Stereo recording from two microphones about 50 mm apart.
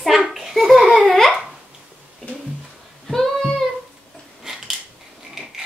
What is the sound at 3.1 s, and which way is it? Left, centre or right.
Child singing, centre.